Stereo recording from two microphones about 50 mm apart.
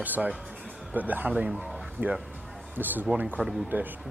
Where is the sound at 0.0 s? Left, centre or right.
Right.